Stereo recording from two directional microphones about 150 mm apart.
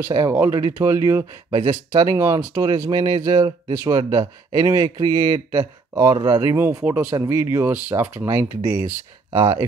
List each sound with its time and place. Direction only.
0.1 s speech: 20° right (ahead or behind)
1.6 s speech: 30° right (ahead or behind); by 8.8 s 10° right (ahead or behind)
9.3 s speech: 30° right (ahead or behind)